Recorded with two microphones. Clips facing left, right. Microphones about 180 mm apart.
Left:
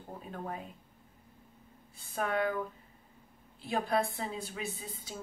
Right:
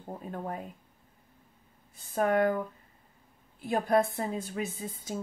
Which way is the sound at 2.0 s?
45° right (ahead or behind).